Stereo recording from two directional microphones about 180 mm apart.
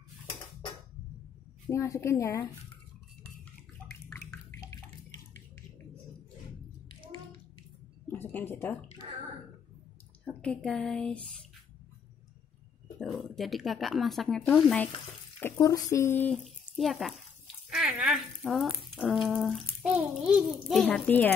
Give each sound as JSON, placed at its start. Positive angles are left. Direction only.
{"t": 1.7, "sound": "speech", "side_deg": 15}
{"t": 3.8, "sound": "a sound", "side_deg": 10}
{"t": 4.5, "sound": "bathtub", "side_deg": 15}
{"t": 8.1, "sound": "a sound", "side_deg": 10}
{"t": 9.0, "sound": "a sound", "side_deg": -30}
{"t": 10.2, "sound": "speech", "side_deg": 5}
{"t": 13.0, "sound": "speech", "side_deg": 0}
{"t": 15.4, "sound": "speech", "side_deg": 15}
{"t": 16.7, "sound": "speech", "side_deg": 0}